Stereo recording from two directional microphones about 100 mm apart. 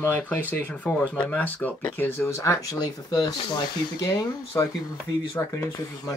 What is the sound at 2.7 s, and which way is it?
Speech, 45° left (ahead or behind).